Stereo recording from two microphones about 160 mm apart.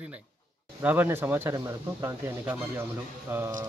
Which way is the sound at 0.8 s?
10° right (ahead or behind).